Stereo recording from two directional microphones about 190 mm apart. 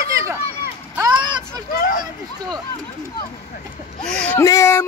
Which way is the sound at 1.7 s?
45° left (ahead or behind).